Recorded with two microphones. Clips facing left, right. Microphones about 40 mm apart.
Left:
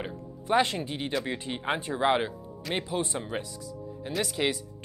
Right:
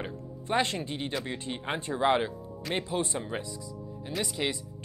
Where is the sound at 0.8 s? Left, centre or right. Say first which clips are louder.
Left 3 dB; left.